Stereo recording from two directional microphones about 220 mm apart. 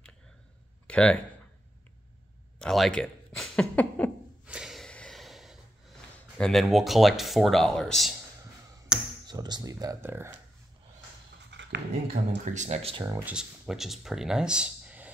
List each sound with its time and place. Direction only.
0.8 s speech: 5° left (ahead or behind)
2.6 s speech: centre (ahead or behind)
4.5 s snort: 5° right (ahead or behind)
6.3 s speech: centre (ahead or behind)
8.9 s a sound: 5° right (ahead or behind)
9.3 s speech: 20° right (ahead or behind)
11.5 s speech: 50° right (ahead or behind)
12.5 s speech: 30° right (ahead or behind)
13.0 s speech: 10° right (ahead or behind)